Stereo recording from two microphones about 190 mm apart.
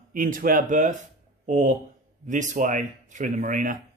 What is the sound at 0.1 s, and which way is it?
Speech, 45° right (ahead or behind).